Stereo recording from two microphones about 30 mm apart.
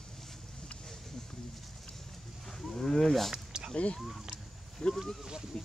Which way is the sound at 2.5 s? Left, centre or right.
Centre.